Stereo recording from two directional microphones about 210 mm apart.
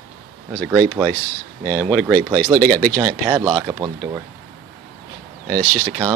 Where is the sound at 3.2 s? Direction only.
15° right (ahead or behind).